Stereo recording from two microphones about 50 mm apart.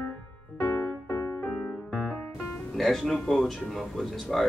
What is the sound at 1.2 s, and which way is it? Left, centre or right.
Music, left.